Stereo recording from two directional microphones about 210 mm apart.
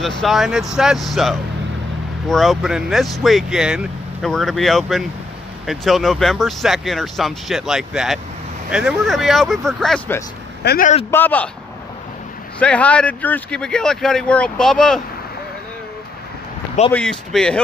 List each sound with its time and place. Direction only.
0.0 s speech: centre (ahead or behind)
10.6 s speech: 50° left (ahead or behind)
11.1 s a man's voice: 10° left (ahead or behind)
12.5 s speech: 5° left (ahead or behind)
16.9 s speech: 5° left (ahead or behind)